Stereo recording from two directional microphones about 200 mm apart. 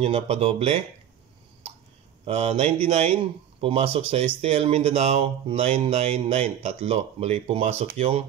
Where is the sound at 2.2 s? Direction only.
30° right (ahead or behind).